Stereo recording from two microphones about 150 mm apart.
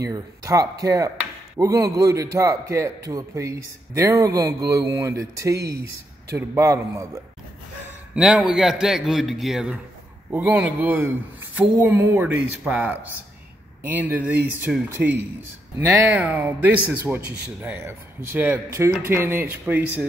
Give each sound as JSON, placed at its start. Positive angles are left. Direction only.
{"t": 0.0, "sound": "a man's voice", "side_deg": -25}
{"t": 8.1, "sound": "a man's voice", "side_deg": -5}